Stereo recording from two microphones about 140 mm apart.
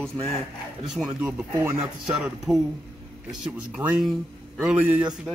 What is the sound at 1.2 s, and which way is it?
Speech, 15° right (ahead or behind).